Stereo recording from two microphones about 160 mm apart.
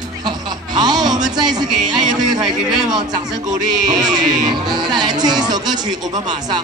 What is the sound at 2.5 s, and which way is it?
Speech, 5° right (ahead or behind).